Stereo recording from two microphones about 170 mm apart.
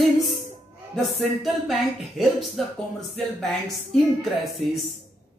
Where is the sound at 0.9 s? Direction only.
Centre (ahead or behind).